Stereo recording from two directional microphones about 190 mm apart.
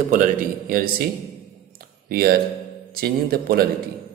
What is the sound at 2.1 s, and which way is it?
Speech, 50° right (ahead or behind).